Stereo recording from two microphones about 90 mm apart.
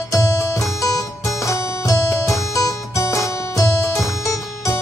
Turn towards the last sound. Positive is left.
turn(degrees=35)  # may be behind; listen again after turning